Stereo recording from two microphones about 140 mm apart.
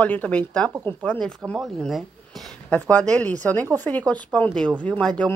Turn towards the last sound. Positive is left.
turn(degrees=10)  # may be behind; listen again after turning